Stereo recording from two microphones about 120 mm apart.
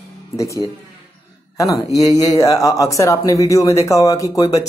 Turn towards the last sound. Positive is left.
turn(degrees=30)  # may be behind; listen again after turning